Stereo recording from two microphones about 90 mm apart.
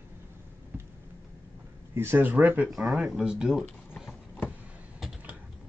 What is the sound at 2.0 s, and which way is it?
Speech, 25° right (ahead or behind).